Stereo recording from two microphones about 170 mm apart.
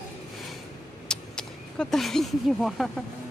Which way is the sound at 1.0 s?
5° left (ahead or behind).